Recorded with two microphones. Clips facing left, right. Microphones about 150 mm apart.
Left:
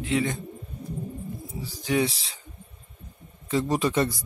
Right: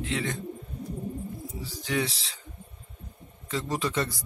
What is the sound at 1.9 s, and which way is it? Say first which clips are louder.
Speech: left 5 dB; 15° left (ahead or behind).